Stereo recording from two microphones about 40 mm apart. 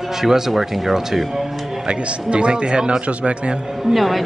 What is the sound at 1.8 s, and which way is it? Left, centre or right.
A man's voice, right.